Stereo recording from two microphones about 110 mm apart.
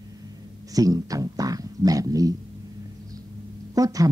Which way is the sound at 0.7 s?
35° right (ahead or behind).